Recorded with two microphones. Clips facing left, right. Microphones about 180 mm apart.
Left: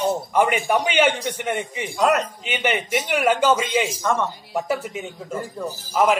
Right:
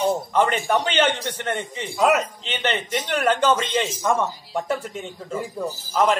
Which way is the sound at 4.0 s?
10° right (ahead or behind).